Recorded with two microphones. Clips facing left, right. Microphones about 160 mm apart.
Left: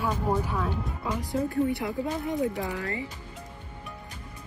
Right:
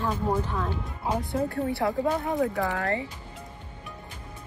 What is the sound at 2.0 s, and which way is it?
Speech, 75° right (ahead or behind).